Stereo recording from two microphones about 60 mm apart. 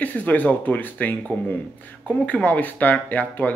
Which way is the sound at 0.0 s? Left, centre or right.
Left.